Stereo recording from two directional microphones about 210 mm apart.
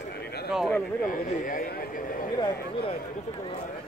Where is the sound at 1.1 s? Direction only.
40° left (ahead or behind).